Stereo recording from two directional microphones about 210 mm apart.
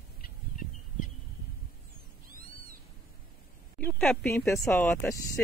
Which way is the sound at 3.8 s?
5° left (ahead or behind).